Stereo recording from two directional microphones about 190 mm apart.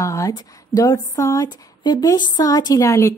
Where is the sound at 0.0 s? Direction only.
15° left (ahead or behind).